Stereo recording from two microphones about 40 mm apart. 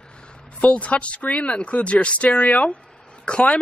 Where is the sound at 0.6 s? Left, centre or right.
Left.